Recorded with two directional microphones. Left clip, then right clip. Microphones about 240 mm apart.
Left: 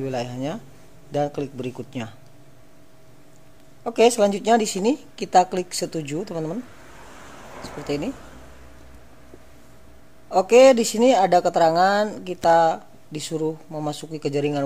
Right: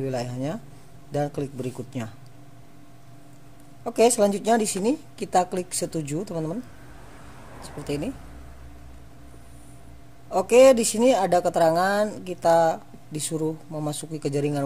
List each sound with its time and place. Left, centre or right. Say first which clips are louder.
0.0 s a woman's voice: left 2 dB; right
3.8 s a woman's voice: left 2 dB; centre
7.6 s a woman's voice: left 3 dB; centre
10.3 s a woman's voice: left 2 dB; centre